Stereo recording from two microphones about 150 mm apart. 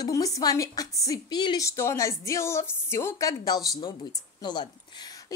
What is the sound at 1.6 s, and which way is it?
A woman's voice, 20° left (ahead or behind).